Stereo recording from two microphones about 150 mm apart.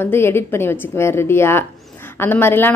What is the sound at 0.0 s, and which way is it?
A woman's voice, 15° left (ahead or behind).